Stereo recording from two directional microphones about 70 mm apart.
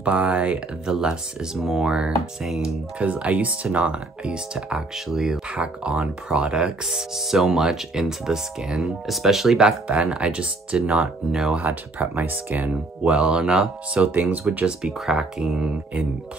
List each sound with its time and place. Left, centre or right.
0.0 s speech: centre
3.0 s speech: centre
5.5 s speech: centre
11.5 s speech: right
13.0 s speech: centre